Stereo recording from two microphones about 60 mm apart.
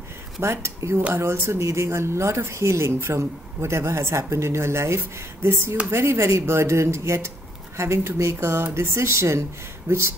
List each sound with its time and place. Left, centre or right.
0.4 s speech: right